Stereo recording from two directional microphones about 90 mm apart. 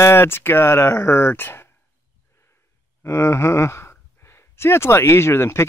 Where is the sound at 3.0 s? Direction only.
30° left (ahead or behind).